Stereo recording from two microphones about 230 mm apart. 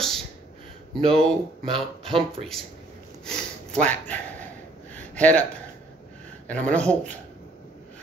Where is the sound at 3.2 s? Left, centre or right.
Centre.